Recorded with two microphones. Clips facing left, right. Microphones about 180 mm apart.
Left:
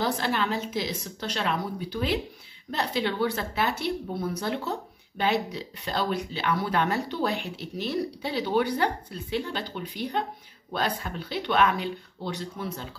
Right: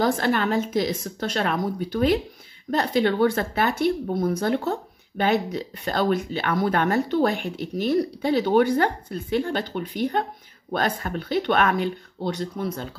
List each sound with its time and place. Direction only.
0.0 s speech: 50° right (ahead or behind)